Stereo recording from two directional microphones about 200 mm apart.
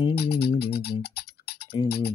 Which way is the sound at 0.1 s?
55° left (ahead or behind).